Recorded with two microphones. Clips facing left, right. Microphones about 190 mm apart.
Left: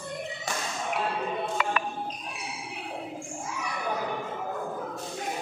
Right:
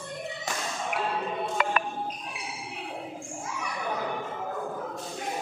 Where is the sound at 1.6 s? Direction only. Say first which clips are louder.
Right 3 dB; 50° right (ahead or behind).